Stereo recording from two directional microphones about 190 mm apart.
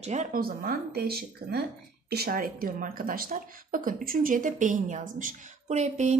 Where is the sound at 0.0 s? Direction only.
35° right (ahead or behind).